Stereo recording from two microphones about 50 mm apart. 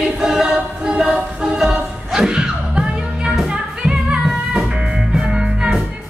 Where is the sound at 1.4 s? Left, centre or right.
Centre.